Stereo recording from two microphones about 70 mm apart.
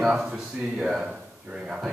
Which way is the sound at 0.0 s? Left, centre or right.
Centre.